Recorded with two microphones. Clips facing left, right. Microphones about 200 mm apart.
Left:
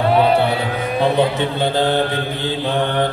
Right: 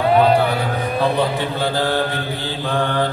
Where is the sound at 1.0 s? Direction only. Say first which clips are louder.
Left 4 dB; 20° left (ahead or behind).